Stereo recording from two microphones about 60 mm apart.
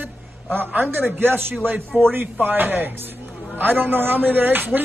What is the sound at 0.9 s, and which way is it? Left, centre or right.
Speech, right.